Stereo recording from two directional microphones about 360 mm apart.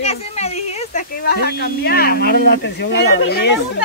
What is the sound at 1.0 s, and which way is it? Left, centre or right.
Speech, left.